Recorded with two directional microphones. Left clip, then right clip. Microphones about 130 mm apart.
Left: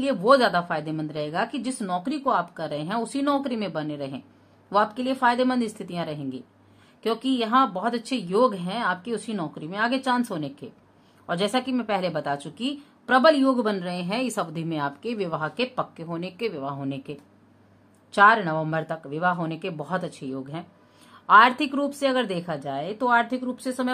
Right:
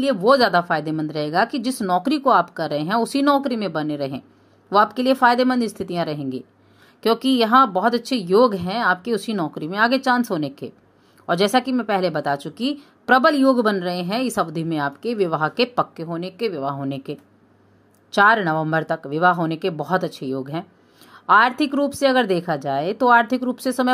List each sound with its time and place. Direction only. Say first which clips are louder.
0.0 s a woman's voice: right 3 dB; 25° right (ahead or behind); by 3.3 s 45° right (ahead or behind)
3.3 s a woman's voice: right 6 dB; 30° right (ahead or behind)
16.1 s a woman's voice: right 5 dB; 20° right (ahead or behind); by 20.6 s 40° right (ahead or behind)
21.3 s a woman's voice: right 1 dB; 25° right (ahead or behind); by 23.9 s 45° right (ahead or behind)